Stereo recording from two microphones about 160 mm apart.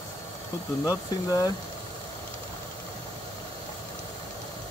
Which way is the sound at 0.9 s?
20° left (ahead or behind).